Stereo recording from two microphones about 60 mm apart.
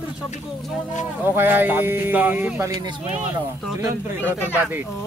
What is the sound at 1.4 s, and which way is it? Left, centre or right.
Speech, right.